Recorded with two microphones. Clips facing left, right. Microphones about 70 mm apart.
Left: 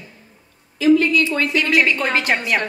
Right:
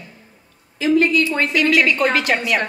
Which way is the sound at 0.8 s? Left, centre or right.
Right.